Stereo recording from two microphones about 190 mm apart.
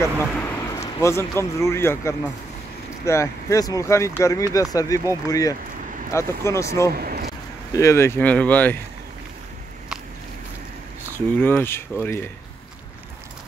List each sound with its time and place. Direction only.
0.2 s speech: 10° left (ahead or behind)
7.0 s vehicle: 55° right (ahead or behind)
7.7 s speech: 15° left (ahead or behind)
11.1 s speech: 10° left (ahead or behind)